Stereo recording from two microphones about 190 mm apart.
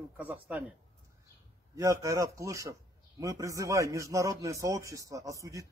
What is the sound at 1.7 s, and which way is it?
A man's voice, 15° right (ahead or behind).